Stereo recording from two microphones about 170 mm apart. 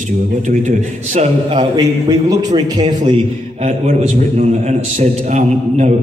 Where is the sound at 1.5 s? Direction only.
25° right (ahead or behind).